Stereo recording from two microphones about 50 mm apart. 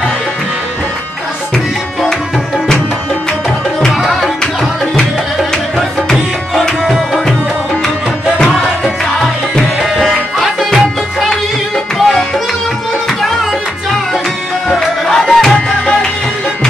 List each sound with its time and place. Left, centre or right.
8.5 s music: centre
10.3 s music: centre
14.8 s music: centre